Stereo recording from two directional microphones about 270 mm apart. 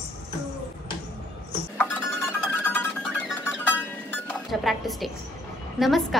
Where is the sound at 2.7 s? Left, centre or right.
Centre.